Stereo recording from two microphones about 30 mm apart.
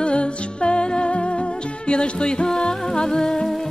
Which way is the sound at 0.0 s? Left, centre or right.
Left.